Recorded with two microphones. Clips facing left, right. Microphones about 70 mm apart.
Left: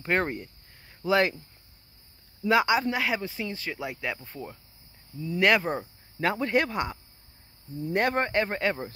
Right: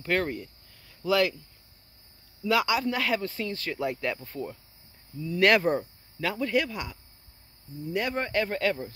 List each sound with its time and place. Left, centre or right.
0.0 s a sound: left
2.4 s speech: left; by 5.8 s centre
6.1 s speech: left
7.8 s speech: left
8.3 s speech: left